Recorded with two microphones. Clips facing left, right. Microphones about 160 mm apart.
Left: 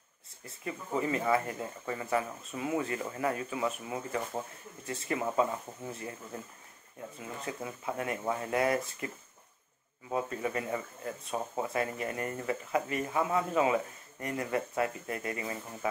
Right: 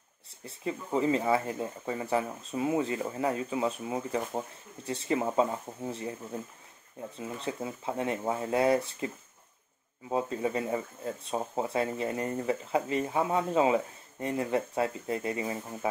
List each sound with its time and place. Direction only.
0.5 s speech: 25° right (ahead or behind)
7.2 s speech: 25° right (ahead or behind)